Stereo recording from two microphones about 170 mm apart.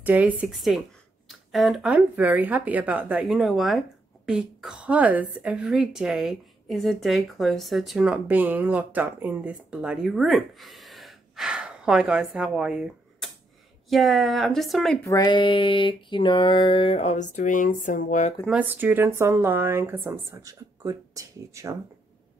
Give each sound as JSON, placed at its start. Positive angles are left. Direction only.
{"t": 0.0, "sound": "a woman's voice", "side_deg": -10}
{"t": 15.0, "sound": "a sound", "side_deg": 25}
{"t": 18.5, "sound": "speech", "side_deg": -10}